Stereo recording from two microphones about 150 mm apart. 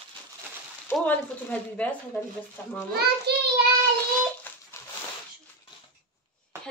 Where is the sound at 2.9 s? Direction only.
90° right.